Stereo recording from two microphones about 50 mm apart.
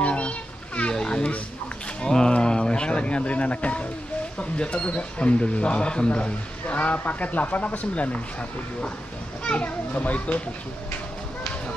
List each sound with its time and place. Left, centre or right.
0.0 s children playing: left
0.9 s children playing: centre
2.0 s a sound: centre
4.4 s speech: centre
9.4 s speech: left